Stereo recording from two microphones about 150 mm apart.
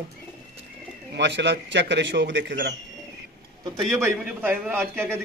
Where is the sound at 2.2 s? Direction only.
75° right (ahead or behind).